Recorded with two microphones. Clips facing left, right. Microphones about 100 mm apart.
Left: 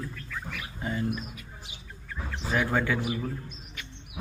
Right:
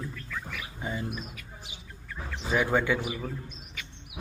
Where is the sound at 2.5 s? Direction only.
5° right (ahead or behind).